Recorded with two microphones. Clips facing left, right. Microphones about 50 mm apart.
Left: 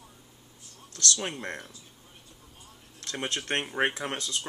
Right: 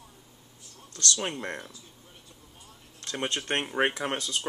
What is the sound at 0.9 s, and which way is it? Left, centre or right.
Speech, right.